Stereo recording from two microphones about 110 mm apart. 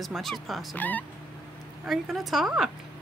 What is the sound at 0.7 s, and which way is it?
Speech, 15° left (ahead or behind).